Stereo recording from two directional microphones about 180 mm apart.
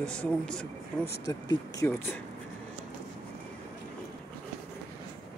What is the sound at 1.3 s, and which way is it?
Speech, 20° left (ahead or behind).